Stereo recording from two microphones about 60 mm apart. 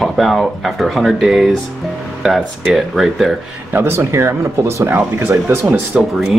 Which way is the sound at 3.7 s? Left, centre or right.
Right.